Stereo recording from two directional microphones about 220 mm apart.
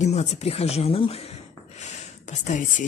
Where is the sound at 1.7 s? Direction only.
30° left (ahead or behind).